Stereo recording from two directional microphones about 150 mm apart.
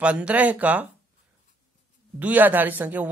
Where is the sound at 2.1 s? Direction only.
10° right (ahead or behind).